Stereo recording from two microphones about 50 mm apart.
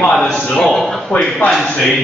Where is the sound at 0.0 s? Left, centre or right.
Centre.